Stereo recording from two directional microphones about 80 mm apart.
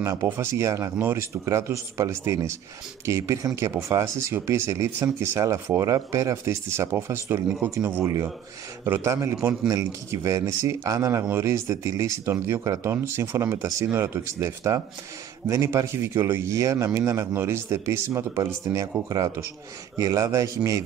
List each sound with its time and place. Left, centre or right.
0.0 s speech: right
12.5 s a man's voice: right
12.9 s speech: right
16.5 s a man's voice: right